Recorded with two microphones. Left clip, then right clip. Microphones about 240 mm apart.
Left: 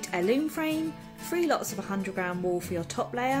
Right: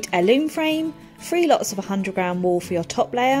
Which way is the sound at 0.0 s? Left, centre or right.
Right.